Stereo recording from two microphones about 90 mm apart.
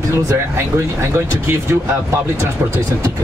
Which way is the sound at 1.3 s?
30° right (ahead or behind).